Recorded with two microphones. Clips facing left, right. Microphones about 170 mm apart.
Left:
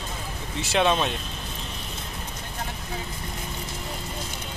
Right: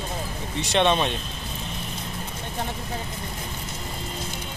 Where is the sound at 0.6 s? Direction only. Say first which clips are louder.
Right 1 dB; 5° left (ahead or behind).